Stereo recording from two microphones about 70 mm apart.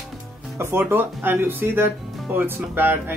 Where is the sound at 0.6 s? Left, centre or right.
Right.